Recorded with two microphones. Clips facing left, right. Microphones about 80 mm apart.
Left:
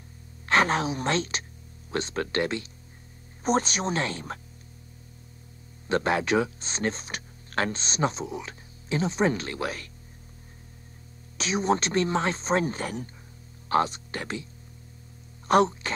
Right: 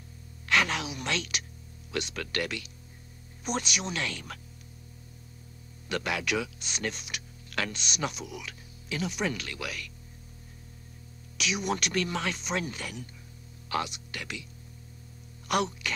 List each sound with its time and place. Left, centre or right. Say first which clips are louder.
0.5 s a woman's voice: left 5 dB; left
5.9 s speech: left 7 dB; left
11.3 s speech: left 6 dB; left